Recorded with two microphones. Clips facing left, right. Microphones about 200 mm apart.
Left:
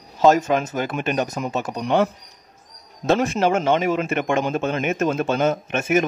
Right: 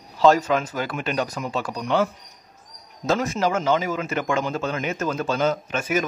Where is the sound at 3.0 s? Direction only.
30° left (ahead or behind).